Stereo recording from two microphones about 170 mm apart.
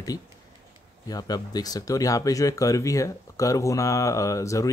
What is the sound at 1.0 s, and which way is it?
Speech, 20° left (ahead or behind).